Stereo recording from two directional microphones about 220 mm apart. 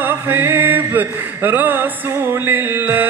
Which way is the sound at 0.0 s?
10° right (ahead or behind).